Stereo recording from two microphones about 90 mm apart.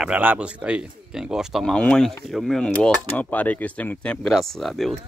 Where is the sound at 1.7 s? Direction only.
10° left (ahead or behind).